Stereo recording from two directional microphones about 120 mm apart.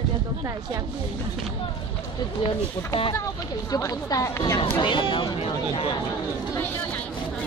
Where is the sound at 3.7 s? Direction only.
30° left (ahead or behind).